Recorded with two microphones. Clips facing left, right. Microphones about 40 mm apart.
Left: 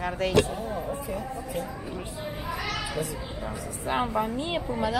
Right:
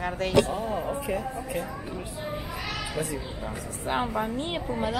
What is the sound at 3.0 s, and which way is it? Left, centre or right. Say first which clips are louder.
Speech: right 3 dB; right.